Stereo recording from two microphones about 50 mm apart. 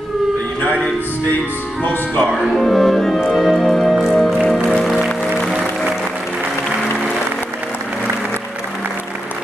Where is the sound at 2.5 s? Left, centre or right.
Centre.